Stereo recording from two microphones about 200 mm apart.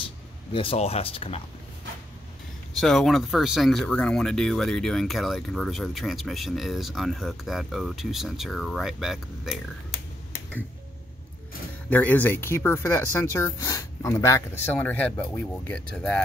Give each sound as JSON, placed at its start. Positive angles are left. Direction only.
{"t": 0.5, "sound": "speech", "side_deg": 25}
{"t": 2.7, "sound": "speech", "side_deg": 0}
{"t": 11.9, "sound": "speech", "side_deg": 10}